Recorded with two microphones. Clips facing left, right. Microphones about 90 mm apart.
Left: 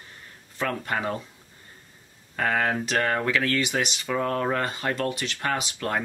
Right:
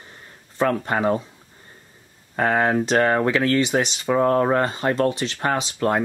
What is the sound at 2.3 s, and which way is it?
Speech, 30° right (ahead or behind).